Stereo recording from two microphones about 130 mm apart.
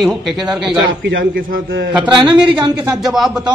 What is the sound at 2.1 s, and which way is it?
A man's voice, 5° right (ahead or behind).